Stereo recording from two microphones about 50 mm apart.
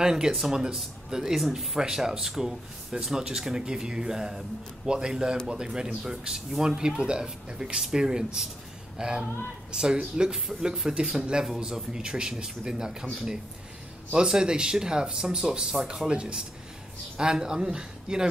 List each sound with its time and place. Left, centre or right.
0.0 s speech: centre
14.1 s speech: centre